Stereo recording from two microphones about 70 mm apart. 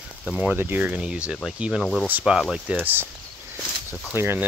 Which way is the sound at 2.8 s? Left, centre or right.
Right.